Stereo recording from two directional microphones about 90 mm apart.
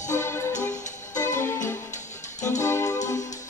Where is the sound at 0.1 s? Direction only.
30° left (ahead or behind).